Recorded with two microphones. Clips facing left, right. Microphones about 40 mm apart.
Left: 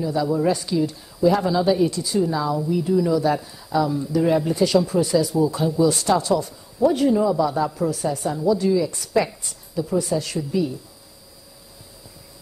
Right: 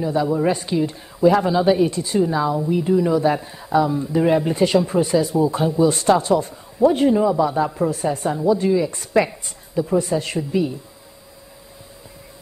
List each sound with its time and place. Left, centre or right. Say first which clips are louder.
0.0 s speech: right 2 dB; right